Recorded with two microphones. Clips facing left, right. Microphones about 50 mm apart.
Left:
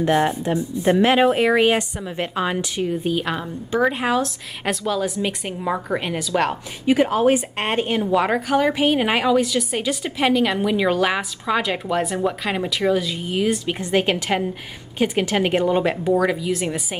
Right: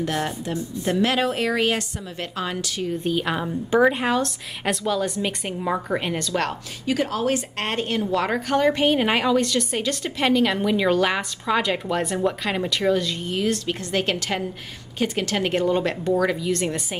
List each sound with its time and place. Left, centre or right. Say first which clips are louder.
0.0 s a woman's voice: left 7 dB; left
3.0 s a woman's voice: left 1 dB; centre
6.9 s a woman's voice: left 6 dB; left; by 17.0 s centre